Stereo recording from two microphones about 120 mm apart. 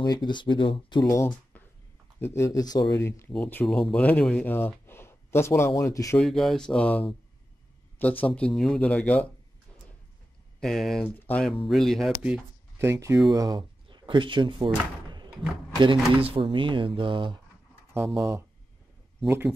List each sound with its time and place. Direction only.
0.0 s speech: 35° left (ahead or behind)
1.0 s speech: 25° left (ahead or behind)
3.0 s speech: 20° left (ahead or behind)
3.6 s speech: 5° left (ahead or behind); by 6.1 s 25° left (ahead or behind)
6.1 s speech: centre (ahead or behind)
8.3 s speech: 10° left (ahead or behind)
10.6 s speech: 5° left (ahead or behind)
12.7 s speech: 25° right (ahead or behind)
13.3 s speech: 35° right (ahead or behind)
17.9 s speech: 20° right (ahead or behind)